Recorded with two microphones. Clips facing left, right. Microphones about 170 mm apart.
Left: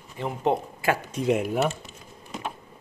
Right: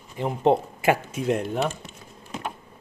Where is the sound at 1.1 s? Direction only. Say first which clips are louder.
Left 1 dB; centre (ahead or behind).